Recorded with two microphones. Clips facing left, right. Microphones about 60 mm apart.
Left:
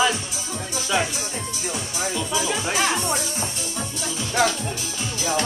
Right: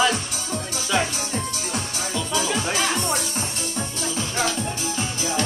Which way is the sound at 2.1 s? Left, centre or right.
Centre.